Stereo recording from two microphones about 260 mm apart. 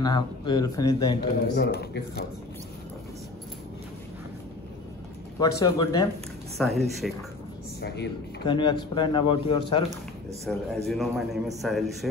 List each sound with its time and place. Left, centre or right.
0.0 s speech: centre
1.5 s speech: left
5.4 s speech: centre
6.6 s a man's voice: centre
7.8 s speech: left
8.5 s speech: centre
10.5 s a man's voice: centre